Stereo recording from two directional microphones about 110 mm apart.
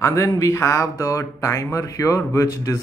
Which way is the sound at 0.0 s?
30° left (ahead or behind).